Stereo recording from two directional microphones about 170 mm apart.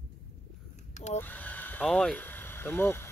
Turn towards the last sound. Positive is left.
turn(degrees=15)  # may be behind; listen again after turning